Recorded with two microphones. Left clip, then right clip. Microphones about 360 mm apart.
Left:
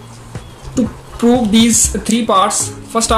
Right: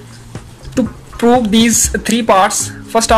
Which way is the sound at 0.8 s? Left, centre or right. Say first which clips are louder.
Right 2 dB; right.